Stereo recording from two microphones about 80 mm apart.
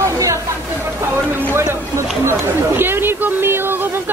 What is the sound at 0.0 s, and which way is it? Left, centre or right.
Chatter, right.